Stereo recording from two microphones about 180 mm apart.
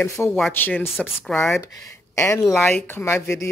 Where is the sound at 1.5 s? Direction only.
20° left (ahead or behind).